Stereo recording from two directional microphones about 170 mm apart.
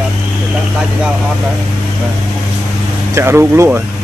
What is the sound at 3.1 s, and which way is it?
Speech, 15° right (ahead or behind).